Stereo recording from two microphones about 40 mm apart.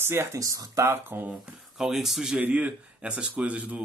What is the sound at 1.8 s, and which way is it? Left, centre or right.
Speech, centre.